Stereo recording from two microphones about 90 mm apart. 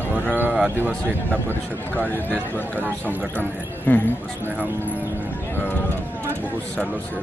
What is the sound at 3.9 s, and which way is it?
Speech, 20° left (ahead or behind).